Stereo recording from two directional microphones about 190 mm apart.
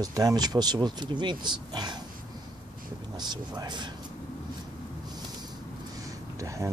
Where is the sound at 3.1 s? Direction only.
20° right (ahead or behind).